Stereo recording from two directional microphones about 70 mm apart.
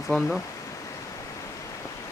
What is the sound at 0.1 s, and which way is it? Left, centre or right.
Speech, centre.